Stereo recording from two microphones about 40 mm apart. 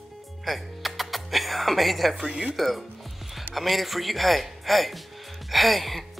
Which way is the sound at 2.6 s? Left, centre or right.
Centre.